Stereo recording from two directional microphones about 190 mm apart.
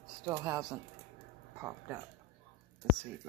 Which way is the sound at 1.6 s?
10° right (ahead or behind).